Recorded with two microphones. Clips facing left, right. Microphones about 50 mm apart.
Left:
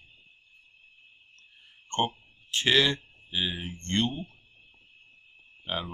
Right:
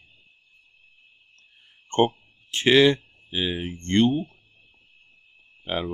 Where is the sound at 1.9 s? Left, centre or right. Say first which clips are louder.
Right 7 dB; right.